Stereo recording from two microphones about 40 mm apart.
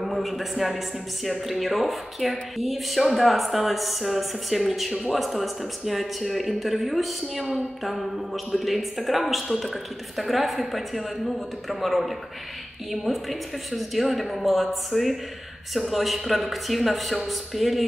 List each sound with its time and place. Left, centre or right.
0.0 s speech: centre